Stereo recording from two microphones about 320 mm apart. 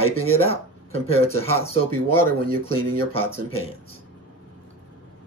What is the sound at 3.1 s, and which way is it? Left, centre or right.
Speech, centre.